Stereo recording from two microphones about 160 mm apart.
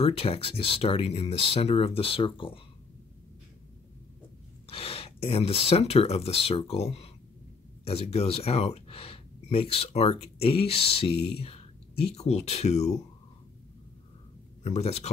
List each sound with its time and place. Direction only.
0.0 s speech: 35° left (ahead or behind)
4.6 s speech: 35° left (ahead or behind)
14.6 s speech: 40° left (ahead or behind)